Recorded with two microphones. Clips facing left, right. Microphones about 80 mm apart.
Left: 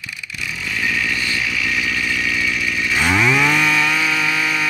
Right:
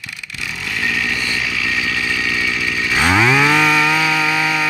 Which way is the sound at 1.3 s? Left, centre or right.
Right.